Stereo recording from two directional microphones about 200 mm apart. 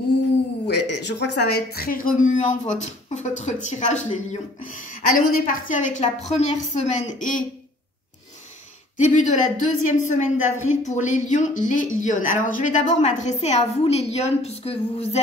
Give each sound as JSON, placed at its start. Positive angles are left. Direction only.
{"t": 0.7, "sound": "a woman's voice", "side_deg": 60}
{"t": 8.9, "sound": "a woman's voice", "side_deg": 40}